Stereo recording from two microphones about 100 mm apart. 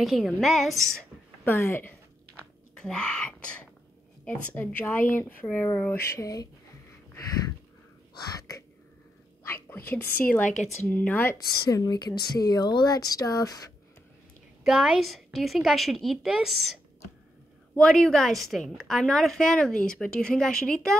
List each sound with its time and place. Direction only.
0.0 s a woman's voice: centre (ahead or behind)
1.4 s speech: 20° left (ahead or behind)
2.8 s speech: 10° left (ahead or behind); by 6.5 s 35° left (ahead or behind)
8.2 s speech: 35° left (ahead or behind)
9.4 s a woman's voice: 25° left (ahead or behind)
11.7 s speech: 40° left (ahead or behind)
14.6 s a woman's voice: 5° right (ahead or behind)
17.7 s a woman's voice: 5° left (ahead or behind)